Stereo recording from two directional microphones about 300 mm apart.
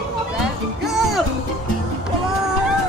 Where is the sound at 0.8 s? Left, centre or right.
Centre.